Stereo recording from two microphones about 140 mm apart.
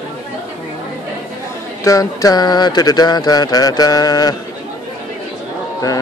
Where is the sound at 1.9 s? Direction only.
25° left (ahead or behind).